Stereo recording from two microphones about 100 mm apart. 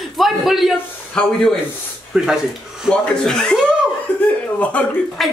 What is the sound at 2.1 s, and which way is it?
Speech, 5° right (ahead or behind).